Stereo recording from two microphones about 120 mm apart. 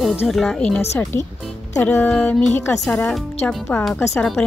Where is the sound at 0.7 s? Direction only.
20° left (ahead or behind).